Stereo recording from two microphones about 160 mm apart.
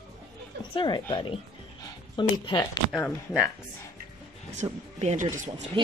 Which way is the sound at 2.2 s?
30° left (ahead or behind).